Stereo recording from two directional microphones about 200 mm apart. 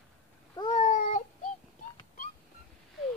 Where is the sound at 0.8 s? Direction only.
40° left (ahead or behind).